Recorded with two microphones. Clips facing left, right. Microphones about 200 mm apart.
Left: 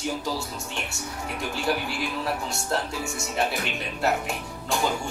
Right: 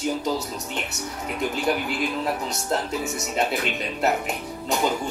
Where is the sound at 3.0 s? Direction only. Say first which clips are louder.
Right 2 dB; 20° right (ahead or behind).